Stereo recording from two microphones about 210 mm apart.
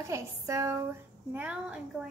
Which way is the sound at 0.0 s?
15° right (ahead or behind).